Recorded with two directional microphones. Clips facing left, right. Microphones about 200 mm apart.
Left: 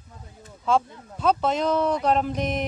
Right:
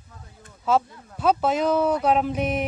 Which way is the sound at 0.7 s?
5° right (ahead or behind).